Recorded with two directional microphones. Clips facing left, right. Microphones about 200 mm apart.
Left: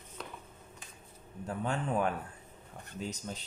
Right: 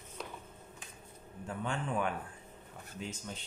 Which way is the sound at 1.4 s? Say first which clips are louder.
Left 3 dB; 40° left (ahead or behind).